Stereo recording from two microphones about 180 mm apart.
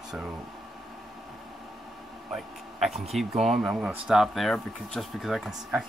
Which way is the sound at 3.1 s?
Centre (ahead or behind).